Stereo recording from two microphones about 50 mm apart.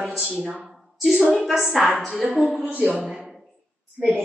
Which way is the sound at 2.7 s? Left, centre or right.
Right.